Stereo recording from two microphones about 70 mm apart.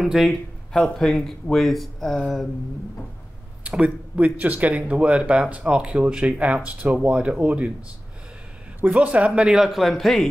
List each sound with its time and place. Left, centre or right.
0.0 s speech: centre
0.7 s speech: centre
3.6 s speech: centre
8.8 s speech: centre